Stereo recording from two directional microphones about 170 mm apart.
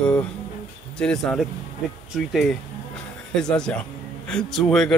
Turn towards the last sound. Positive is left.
turn(degrees=5)  # may be behind; listen again after turning